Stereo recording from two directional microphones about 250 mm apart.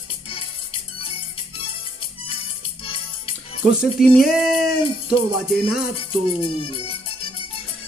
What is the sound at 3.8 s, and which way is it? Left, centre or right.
Speech, centre.